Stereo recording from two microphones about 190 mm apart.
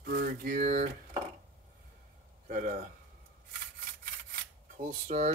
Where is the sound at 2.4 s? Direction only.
45° right (ahead or behind).